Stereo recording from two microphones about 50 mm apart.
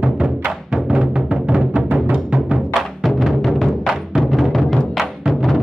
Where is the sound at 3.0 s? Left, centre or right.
Centre.